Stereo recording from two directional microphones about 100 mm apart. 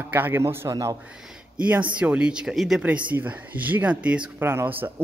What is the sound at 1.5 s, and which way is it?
Speech, 15° right (ahead or behind).